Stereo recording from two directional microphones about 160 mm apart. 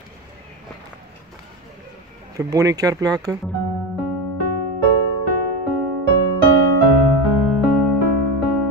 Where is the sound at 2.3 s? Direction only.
20° right (ahead or behind).